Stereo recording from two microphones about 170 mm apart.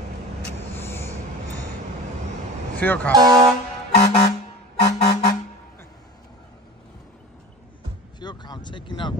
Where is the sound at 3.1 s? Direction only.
25° right (ahead or behind).